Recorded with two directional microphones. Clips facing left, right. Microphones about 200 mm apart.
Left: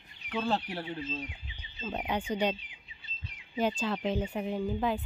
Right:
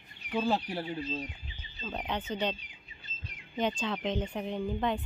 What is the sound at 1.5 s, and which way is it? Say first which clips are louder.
Speech: left 2 dB; 15° left (ahead or behind).